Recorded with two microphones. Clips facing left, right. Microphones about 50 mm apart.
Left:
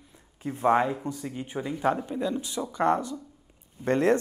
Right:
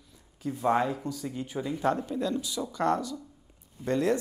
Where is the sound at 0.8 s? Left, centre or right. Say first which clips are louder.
Left 2 dB; left.